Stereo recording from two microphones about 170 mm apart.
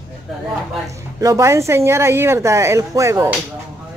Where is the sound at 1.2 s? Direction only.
15° right (ahead or behind).